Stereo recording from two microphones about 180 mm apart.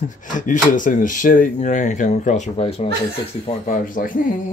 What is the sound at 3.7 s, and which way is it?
Speech, 50° left (ahead or behind).